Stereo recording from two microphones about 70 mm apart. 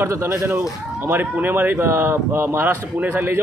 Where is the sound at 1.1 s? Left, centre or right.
Right.